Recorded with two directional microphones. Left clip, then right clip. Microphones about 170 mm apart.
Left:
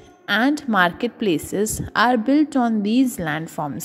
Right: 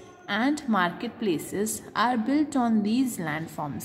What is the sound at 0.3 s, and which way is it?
A woman's voice, 40° left (ahead or behind).